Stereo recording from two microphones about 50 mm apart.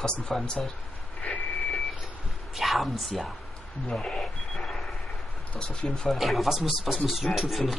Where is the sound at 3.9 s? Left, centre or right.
Centre.